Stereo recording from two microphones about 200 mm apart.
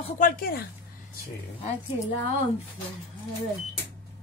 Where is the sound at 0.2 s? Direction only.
50° left (ahead or behind).